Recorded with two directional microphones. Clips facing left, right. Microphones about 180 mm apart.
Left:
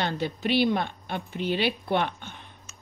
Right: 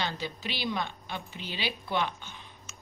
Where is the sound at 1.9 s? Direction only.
55° left (ahead or behind).